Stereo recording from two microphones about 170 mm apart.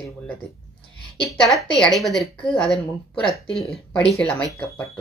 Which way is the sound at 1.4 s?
Centre (ahead or behind).